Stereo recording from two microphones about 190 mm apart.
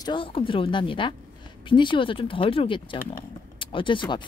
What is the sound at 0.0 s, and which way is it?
Speech, 25° left (ahead or behind).